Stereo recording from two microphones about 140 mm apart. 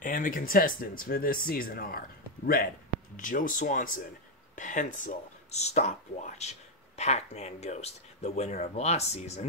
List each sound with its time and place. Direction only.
0.0 s speech: 70° left (ahead or behind); by 2.7 s 90° left
3.2 s speech: 70° left (ahead or behind)
4.6 s speech: 65° left (ahead or behind)